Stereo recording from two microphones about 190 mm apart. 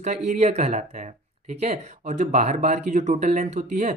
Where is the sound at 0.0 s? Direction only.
40° right (ahead or behind).